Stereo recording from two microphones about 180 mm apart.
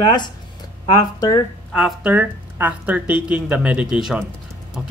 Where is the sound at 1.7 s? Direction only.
5° right (ahead or behind).